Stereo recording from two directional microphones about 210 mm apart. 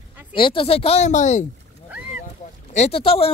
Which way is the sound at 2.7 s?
30° left (ahead or behind).